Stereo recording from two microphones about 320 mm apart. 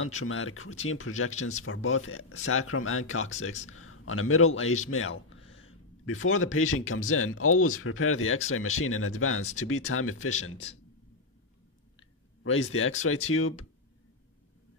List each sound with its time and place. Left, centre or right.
0.0 s speech: left
12.4 s speech: left